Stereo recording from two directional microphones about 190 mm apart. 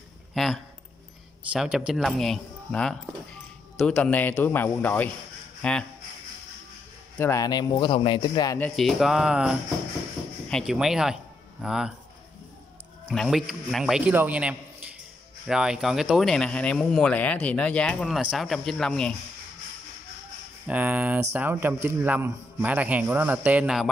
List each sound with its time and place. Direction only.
0.3 s a sound: centre (ahead or behind)
1.5 s speech: 5° right (ahead or behind)
7.2 s speech: 15° left (ahead or behind)
8.5 s speech: 5° left (ahead or behind)
13.0 s speech: 5° left (ahead or behind)
20.6 s a man's voice: 10° right (ahead or behind)